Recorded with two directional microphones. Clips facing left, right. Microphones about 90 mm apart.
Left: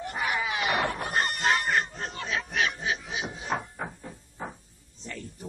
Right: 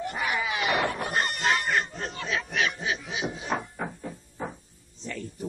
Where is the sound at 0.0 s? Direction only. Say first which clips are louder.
Right 1 dB; 35° left (ahead or behind).